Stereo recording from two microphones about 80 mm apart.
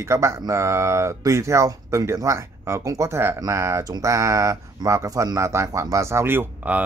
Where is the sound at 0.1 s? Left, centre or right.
Right.